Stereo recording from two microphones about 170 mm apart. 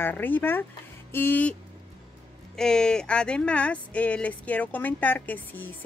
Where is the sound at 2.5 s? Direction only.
5° left (ahead or behind).